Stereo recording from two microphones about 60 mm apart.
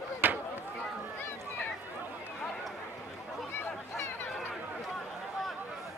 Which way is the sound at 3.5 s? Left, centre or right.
Left.